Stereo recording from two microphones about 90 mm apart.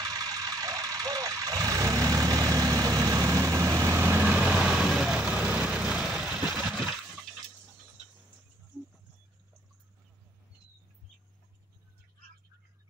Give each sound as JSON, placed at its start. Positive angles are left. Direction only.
{"t": 0.0, "sound": "vehicle", "side_deg": -45}
{"t": 4.0, "sound": "vehicle", "side_deg": -20}
{"t": 6.0, "sound": "a sound", "side_deg": -5}